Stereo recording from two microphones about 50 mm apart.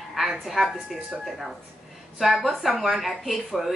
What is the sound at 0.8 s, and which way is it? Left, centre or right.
Speech, centre.